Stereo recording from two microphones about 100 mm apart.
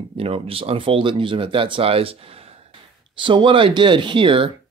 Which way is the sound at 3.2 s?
55° right (ahead or behind).